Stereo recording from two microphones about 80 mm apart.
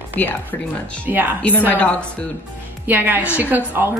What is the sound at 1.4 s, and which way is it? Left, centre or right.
Speech, left.